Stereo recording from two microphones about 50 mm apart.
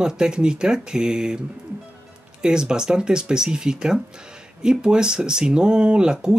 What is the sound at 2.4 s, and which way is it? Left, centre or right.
Speech, centre.